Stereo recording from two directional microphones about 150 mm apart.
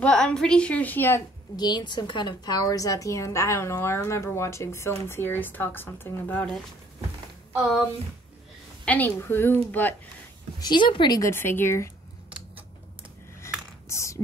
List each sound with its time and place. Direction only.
0.0 s a woman's voice: 5° left (ahead or behind)
1.6 s a woman's voice: 30° left (ahead or behind); by 6.5 s 10° left (ahead or behind)
8.8 s a woman's voice: 10° left (ahead or behind)
10.6 s a woman's voice: 30° left (ahead or behind)
13.8 s speech: 20° left (ahead or behind)